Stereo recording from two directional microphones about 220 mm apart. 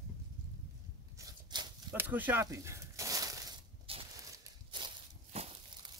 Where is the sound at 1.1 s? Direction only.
15° right (ahead or behind).